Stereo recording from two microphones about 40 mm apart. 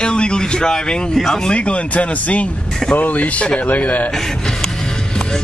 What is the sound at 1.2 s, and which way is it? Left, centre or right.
Speech, centre.